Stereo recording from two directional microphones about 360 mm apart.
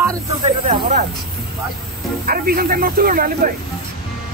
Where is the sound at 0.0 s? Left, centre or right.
Centre.